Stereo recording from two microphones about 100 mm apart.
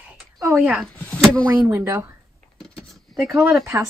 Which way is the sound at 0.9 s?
5° left (ahead or behind).